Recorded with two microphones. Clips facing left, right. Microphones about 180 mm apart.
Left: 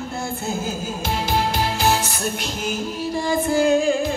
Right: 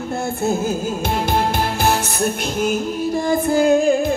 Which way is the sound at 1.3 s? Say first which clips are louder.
Even; 55° right (ahead or behind).